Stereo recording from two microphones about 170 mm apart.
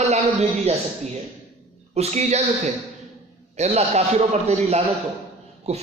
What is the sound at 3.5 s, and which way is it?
A man's voice, 40° right (ahead or behind).